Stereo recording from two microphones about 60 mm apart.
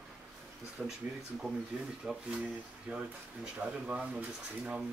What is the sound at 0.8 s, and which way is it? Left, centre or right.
Speech, right.